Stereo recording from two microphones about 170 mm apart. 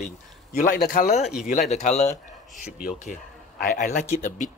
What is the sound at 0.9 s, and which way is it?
A man's voice, 45° left (ahead or behind).